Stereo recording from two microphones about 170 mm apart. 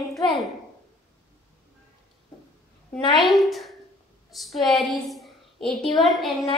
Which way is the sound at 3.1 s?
Centre (ahead or behind).